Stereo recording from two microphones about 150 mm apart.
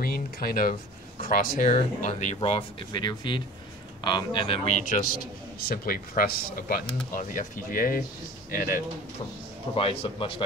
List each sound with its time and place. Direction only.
0.0 s speech: 85° left; by 2.6 s 50° left (ahead or behind)
2.9 s speech: 30° left (ahead or behind)
4.6 s speech: 50° left (ahead or behind)
5.0 s a man's voice: 80° left
7.2 s speech: 65° left (ahead or behind)
8.5 s a man's voice: 75° left (ahead or behind)
9.8 s speech: 35° left (ahead or behind)